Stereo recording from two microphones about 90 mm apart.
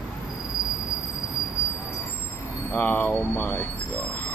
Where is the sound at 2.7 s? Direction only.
20° left (ahead or behind).